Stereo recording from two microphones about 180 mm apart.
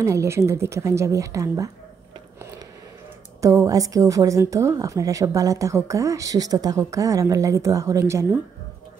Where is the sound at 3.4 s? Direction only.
20° right (ahead or behind).